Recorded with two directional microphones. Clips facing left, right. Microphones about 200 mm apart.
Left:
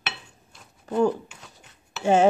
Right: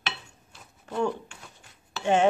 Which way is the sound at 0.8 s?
35° left (ahead or behind).